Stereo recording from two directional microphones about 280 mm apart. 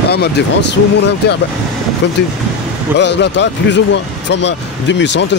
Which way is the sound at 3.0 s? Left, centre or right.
Left.